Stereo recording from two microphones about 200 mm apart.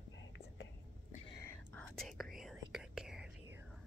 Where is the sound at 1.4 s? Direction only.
10° left (ahead or behind).